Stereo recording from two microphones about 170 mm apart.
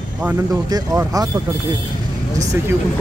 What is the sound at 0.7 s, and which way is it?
Speech, 20° right (ahead or behind).